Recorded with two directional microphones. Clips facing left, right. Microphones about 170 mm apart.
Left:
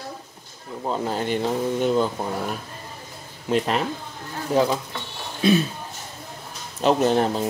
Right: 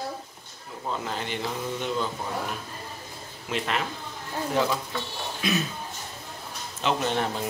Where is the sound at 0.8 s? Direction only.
35° left (ahead or behind).